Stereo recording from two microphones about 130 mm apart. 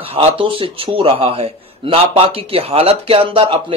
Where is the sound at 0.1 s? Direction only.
45° right (ahead or behind).